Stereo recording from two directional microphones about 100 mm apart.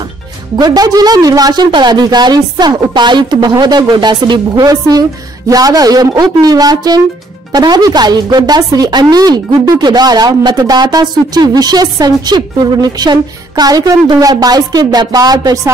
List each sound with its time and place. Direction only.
0.6 s a woman's voice: 40° right (ahead or behind)